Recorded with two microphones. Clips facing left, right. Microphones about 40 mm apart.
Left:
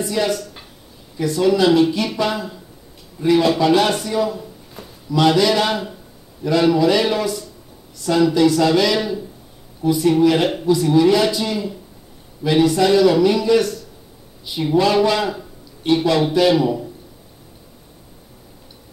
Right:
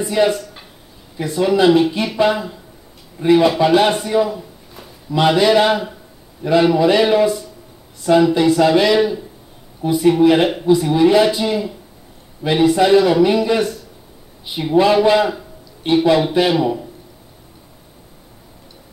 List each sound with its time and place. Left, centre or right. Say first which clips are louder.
0.0 s a man's voice: right 4 dB; right